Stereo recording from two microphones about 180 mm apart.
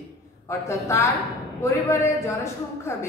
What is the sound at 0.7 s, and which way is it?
A woman's voice, 15° left (ahead or behind).